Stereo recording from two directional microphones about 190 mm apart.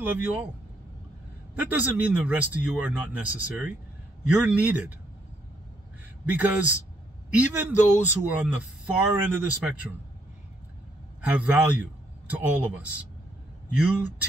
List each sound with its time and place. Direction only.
0.0 s a man's voice: 10° right (ahead or behind)
1.5 s a man's voice: 10° right (ahead or behind)
6.2 s a man's voice: 10° right (ahead or behind)
11.1 s a man's voice: 10° right (ahead or behind)